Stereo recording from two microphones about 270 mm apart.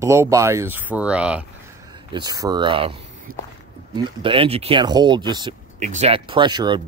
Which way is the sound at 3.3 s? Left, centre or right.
Right.